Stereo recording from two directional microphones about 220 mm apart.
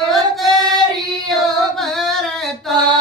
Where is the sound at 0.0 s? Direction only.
Centre (ahead or behind).